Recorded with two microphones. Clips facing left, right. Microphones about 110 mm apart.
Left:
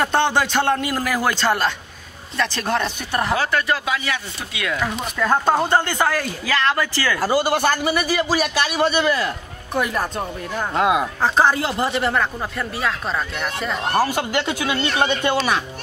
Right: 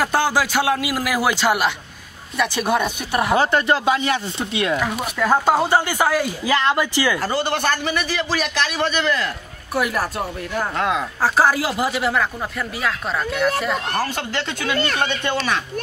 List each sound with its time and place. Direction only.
0.0 s speech: 5° right (ahead or behind)
3.3 s speech: 25° right (ahead or behind)
4.7 s speech: 10° right (ahead or behind)
7.2 s a man's voice: 10° left (ahead or behind)
9.8 s speech: 5° right (ahead or behind)
10.8 s a man's voice: 10° left (ahead or behind)
11.2 s speech: 5° right (ahead or behind)
13.9 s a man's voice: 10° left (ahead or behind)